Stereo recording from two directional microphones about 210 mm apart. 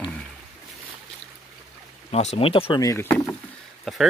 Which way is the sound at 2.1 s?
30° left (ahead or behind).